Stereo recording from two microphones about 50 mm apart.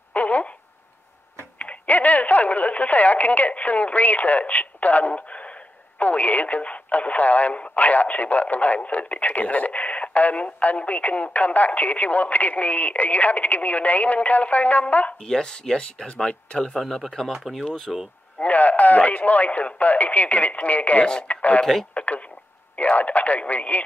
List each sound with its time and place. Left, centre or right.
0.1 s a sound: left
1.6 s speech: left
15.2 s speech: centre
16.5 s speech: centre
16.8 s speech: centre
18.4 s speech: left
21.0 s speech: centre
21.3 s speech: left
21.9 s a sound: left
22.8 s speech: left